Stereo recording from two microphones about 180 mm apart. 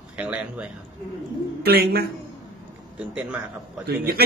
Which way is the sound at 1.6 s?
60° right (ahead or behind).